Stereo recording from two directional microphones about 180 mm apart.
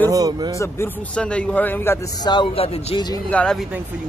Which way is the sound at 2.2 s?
25° left (ahead or behind).